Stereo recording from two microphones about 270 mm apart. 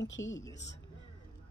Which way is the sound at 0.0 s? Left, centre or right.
Left.